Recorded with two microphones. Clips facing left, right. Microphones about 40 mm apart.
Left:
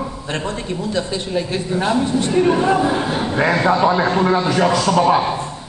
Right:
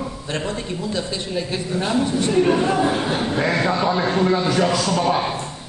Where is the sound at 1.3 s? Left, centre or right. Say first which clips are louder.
Left 3 dB; centre.